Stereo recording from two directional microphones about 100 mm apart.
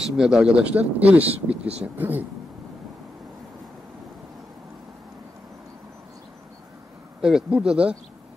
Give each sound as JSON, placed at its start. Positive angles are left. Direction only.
{"t": 0.0, "sound": "speech", "side_deg": -5}
{"t": 7.2, "sound": "speech", "side_deg": -5}